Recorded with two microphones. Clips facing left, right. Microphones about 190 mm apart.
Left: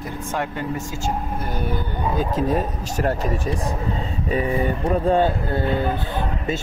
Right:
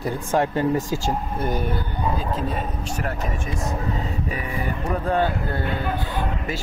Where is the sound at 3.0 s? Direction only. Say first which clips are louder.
Left 8 dB; 30° left (ahead or behind).